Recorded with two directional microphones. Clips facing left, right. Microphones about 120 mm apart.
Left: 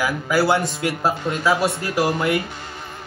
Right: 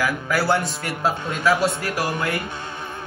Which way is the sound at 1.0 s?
25° left (ahead or behind).